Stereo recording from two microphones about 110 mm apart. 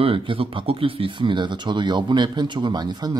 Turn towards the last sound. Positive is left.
turn(degrees=-40)  # may be behind; listen again after turning